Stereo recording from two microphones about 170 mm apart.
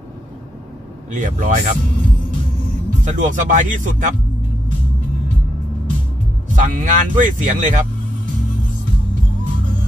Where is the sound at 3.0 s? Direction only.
45° right (ahead or behind).